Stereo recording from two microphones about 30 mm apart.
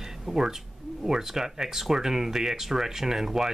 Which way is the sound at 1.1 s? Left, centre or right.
Centre.